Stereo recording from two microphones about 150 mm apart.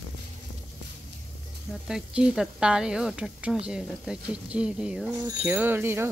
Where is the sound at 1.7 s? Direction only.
5° right (ahead or behind).